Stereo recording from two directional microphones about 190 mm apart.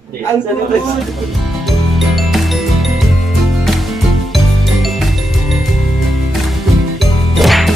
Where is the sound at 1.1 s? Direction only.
Centre (ahead or behind).